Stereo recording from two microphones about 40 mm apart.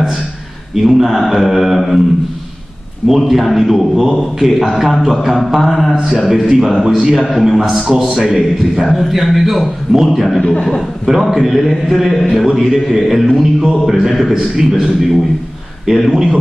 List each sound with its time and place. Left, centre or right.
0.7 s a man's voice: centre
3.1 s a man's voice: centre
7.2 s a man's voice: centre
10.4 s a man's voice: left
11.1 s a man's voice: centre